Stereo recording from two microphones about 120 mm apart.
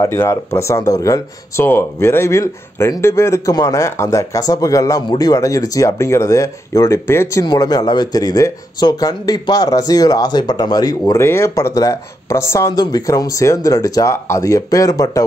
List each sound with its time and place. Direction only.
0.0 s speech: 25° left (ahead or behind)
7.4 s speech: 35° left (ahead or behind)
11.1 s speech: 20° left (ahead or behind)